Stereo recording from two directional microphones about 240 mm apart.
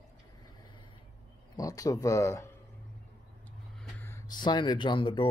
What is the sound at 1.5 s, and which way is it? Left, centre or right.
Speech, centre.